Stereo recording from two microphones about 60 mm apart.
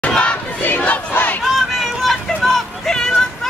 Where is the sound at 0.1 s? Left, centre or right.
Centre.